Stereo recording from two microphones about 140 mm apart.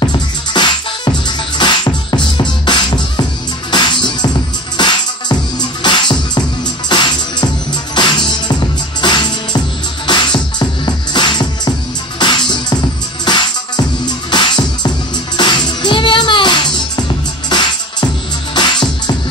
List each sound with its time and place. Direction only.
0.0 s music: 35° left (ahead or behind)